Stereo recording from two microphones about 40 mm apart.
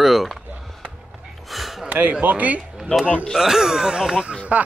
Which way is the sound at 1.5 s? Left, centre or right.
Centre.